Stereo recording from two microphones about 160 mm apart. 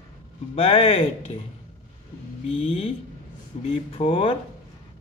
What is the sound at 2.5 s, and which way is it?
Speech, 35° left (ahead or behind).